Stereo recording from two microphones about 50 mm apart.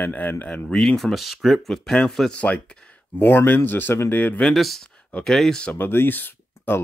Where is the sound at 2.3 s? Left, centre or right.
Left.